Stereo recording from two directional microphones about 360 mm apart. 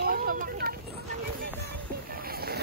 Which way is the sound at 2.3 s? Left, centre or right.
Right.